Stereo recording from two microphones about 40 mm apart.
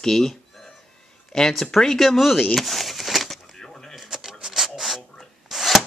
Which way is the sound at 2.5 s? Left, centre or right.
Centre.